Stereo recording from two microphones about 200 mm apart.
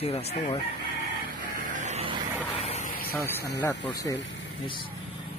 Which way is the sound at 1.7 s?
35° right (ahead or behind).